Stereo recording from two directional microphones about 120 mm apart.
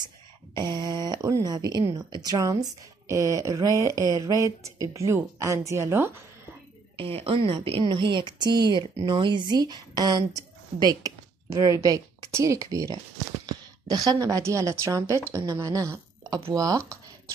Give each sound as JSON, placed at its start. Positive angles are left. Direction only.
{"t": 0.6, "sound": "speech", "side_deg": -40}
{"t": 7.0, "sound": "a woman's voice", "side_deg": -50}